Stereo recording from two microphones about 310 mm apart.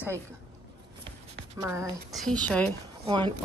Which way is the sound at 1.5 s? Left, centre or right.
Centre.